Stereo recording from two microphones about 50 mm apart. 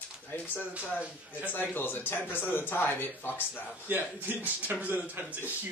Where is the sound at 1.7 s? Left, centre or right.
Left.